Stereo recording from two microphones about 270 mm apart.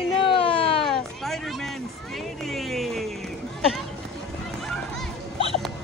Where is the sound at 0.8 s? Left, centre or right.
Centre.